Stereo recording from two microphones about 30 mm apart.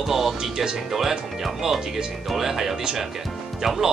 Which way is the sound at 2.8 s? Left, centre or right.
Right.